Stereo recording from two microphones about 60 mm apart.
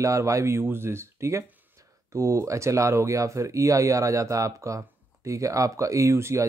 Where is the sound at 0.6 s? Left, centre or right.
Right.